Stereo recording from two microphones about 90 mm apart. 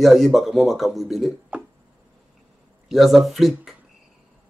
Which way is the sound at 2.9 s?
Centre (ahead or behind).